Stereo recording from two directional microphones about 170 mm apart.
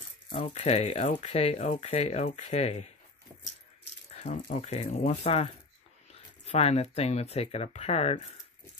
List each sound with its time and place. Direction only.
0.3 s speech: 35° left (ahead or behind)
4.1 s speech: 40° left (ahead or behind)